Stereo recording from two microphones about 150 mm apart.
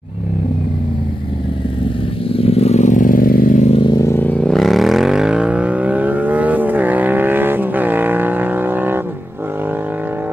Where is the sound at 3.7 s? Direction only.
35° left (ahead or behind).